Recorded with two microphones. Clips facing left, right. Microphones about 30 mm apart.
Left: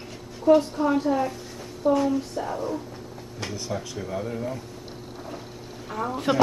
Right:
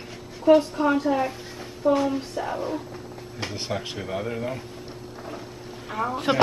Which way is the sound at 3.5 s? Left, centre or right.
Right.